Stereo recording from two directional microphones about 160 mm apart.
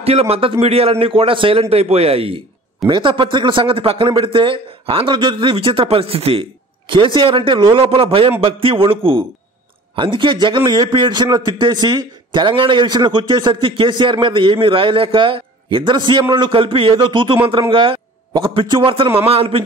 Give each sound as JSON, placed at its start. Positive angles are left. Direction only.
{"t": 0.0, "sound": "a man's voice", "side_deg": -40}